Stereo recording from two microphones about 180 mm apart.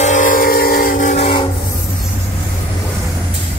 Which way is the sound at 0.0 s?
45° left (ahead or behind).